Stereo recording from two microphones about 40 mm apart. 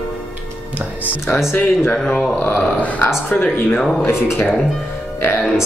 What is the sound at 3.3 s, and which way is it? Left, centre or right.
Speech, left.